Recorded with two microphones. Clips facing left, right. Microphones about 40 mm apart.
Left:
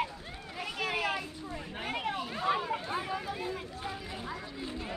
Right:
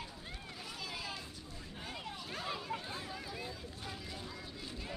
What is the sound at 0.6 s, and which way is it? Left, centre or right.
Children playing, left.